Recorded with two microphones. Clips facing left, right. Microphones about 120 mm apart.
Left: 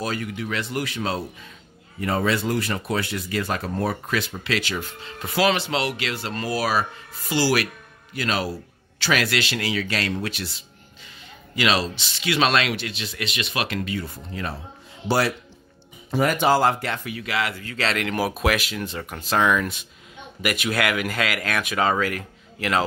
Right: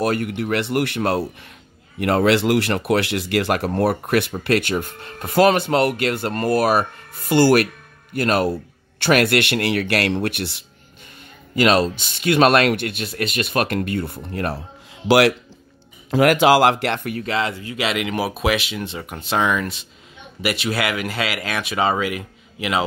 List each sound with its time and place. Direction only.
0.0 s speech: 60° right (ahead or behind)
11.5 s speech: 50° right (ahead or behind)
15.0 s speech: 90° right; by 17.2 s 60° right (ahead or behind)
17.2 s speech: 30° right (ahead or behind)
17.6 s speech: 15° right (ahead or behind)